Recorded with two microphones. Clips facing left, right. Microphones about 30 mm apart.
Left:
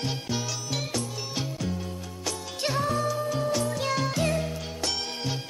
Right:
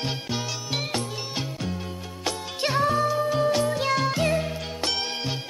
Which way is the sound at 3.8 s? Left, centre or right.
Centre.